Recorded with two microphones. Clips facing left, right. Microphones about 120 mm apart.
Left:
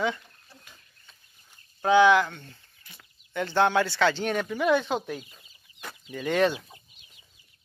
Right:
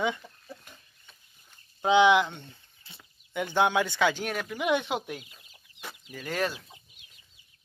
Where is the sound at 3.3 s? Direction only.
15° right (ahead or behind).